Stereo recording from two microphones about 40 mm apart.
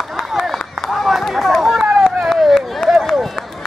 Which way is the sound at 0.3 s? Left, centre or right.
Centre.